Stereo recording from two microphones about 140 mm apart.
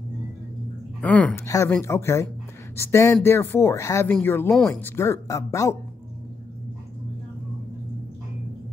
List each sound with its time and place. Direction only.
1.0 s speech: 10° left (ahead or behind)
1.4 s speech: 20° left (ahead or behind)